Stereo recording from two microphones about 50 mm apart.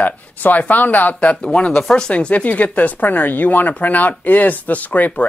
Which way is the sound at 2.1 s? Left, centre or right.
Left.